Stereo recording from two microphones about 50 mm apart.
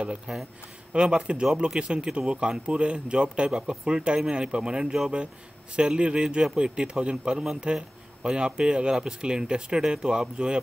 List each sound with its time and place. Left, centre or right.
0.3 s speech: centre